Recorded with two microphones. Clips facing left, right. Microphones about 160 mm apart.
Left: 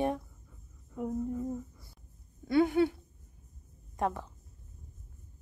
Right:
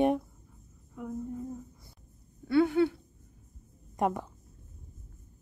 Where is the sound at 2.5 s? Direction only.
20° left (ahead or behind).